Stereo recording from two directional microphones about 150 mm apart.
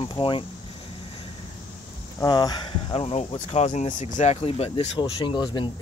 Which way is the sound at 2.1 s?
25° left (ahead or behind).